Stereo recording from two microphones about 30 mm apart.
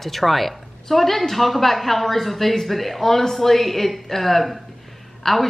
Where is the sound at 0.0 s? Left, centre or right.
Centre.